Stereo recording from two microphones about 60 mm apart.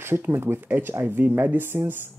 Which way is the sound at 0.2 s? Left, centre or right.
Right.